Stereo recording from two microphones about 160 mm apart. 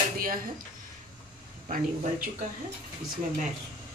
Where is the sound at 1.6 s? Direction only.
45° right (ahead or behind).